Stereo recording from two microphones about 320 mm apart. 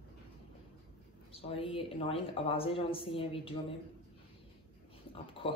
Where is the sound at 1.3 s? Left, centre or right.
Centre.